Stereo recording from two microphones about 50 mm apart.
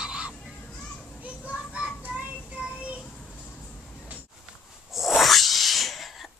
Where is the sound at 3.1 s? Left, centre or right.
Left.